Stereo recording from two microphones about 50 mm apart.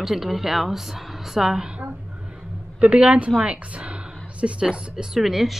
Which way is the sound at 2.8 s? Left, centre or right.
Right.